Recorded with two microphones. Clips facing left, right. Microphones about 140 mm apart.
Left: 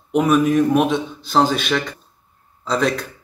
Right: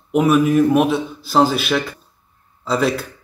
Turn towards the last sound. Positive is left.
turn(degrees=-5)  # may be behind; listen again after turning